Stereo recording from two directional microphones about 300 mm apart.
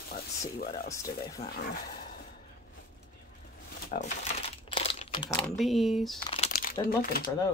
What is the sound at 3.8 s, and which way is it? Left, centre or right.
Crumpling, left.